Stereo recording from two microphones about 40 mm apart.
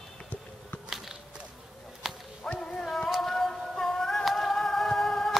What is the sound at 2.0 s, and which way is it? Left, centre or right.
Whip, centre.